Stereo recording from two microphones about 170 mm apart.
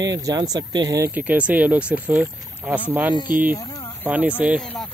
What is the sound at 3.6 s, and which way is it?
Speech, 20° left (ahead or behind).